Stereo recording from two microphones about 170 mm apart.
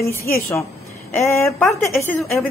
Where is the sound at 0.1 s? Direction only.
15° left (ahead or behind).